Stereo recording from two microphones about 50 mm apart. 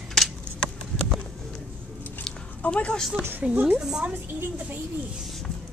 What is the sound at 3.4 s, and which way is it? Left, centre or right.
Speech, right.